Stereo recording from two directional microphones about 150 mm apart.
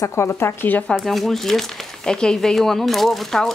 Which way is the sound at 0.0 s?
20° left (ahead or behind).